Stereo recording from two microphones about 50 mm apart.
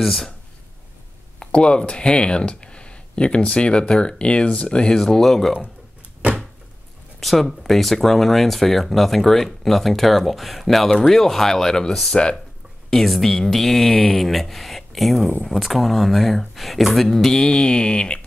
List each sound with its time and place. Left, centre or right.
0.0 s speech: centre
1.4 s speech: left
7.2 s speech: centre
12.9 s speech: centre